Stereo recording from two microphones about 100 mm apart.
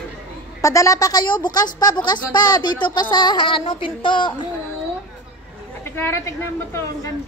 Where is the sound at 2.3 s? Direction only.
45° left (ahead or behind).